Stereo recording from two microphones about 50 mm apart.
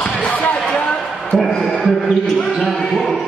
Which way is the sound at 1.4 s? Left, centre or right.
Centre.